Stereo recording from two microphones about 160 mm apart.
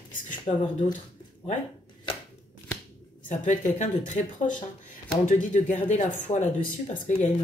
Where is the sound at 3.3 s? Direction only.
50° left (ahead or behind).